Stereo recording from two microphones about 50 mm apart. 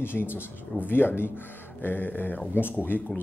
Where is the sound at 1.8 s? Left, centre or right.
Left.